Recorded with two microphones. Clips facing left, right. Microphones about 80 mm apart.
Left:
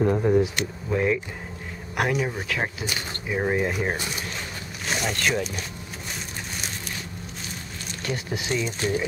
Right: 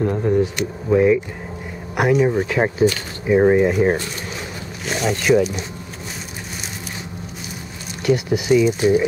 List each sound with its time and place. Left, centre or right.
0.0 s speech: centre
2.3 s speech: right
3.5 s speech: centre
4.8 s speech: centre
8.0 s speech: centre